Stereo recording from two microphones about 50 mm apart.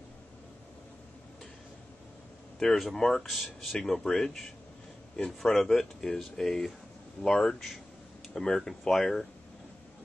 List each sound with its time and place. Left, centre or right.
2.6 s speech: centre